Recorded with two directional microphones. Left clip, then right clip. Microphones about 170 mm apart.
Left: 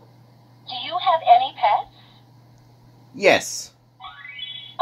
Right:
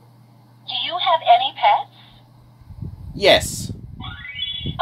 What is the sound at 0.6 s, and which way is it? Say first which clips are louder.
Telephone: right 2 dB; 15° right (ahead or behind).